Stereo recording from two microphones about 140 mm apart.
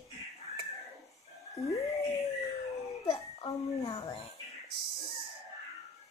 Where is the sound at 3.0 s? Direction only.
45° left (ahead or behind).